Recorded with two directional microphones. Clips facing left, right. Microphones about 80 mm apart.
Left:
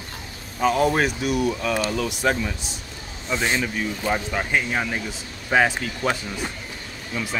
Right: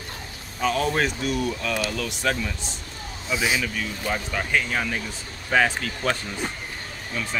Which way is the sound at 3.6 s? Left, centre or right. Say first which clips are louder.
Left 3 dB; left.